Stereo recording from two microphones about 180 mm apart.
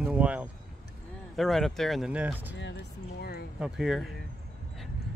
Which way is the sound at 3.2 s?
60° left (ahead or behind).